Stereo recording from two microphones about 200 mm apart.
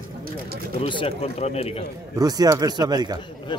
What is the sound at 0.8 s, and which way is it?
Speech, 30° left (ahead or behind).